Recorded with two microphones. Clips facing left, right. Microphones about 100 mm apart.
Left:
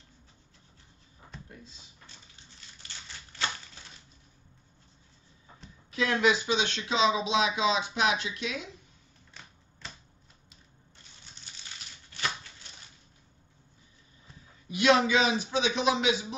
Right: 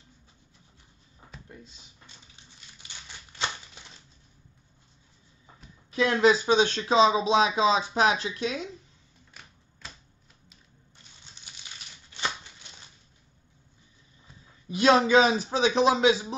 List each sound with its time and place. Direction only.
2.8 s crumpling: 15° right (ahead or behind)
5.9 s speech: 35° right (ahead or behind)
9.3 s typewriter: 5° right (ahead or behind)
14.7 s speech: 35° right (ahead or behind)